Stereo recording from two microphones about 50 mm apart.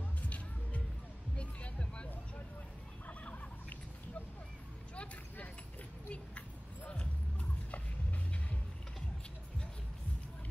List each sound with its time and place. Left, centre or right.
1.3 s music: left
4.9 s a sound: left
6.0 s music: left